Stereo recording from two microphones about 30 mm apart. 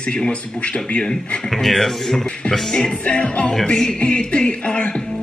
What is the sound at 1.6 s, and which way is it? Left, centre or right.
Speech, centre.